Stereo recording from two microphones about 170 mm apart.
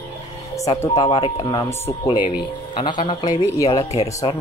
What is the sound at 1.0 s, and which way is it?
Speech, 35° left (ahead or behind).